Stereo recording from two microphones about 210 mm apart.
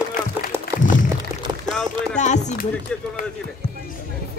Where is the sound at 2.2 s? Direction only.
35° left (ahead or behind).